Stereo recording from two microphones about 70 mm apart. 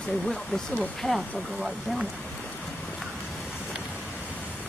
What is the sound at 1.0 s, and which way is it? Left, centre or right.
Speech, centre.